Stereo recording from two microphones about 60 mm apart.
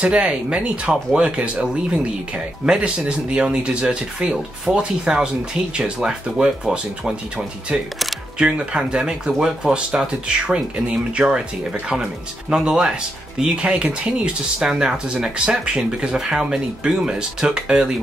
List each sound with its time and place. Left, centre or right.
0.0 s speech: right